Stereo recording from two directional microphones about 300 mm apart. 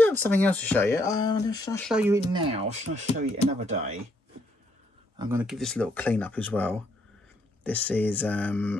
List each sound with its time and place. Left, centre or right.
0.0 s speech: centre
1.9 s speech: centre
2.3 s speech: centre
5.2 s speech: centre